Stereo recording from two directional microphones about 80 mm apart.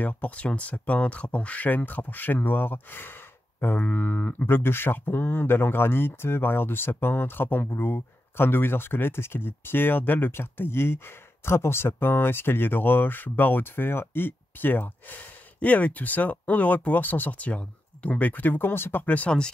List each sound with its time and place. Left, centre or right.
0.0 s speech: centre